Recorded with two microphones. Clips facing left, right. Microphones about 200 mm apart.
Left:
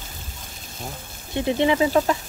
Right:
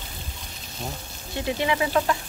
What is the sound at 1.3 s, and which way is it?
Speech, 25° left (ahead or behind).